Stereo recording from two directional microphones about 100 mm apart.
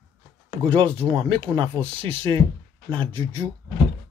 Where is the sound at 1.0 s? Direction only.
65° right (ahead or behind).